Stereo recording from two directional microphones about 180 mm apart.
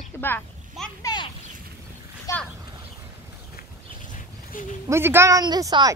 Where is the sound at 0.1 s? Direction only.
15° left (ahead or behind).